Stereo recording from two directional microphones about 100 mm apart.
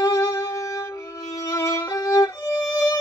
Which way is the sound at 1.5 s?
30° left (ahead or behind).